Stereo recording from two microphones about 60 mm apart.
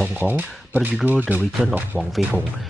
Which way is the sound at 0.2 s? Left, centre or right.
Right.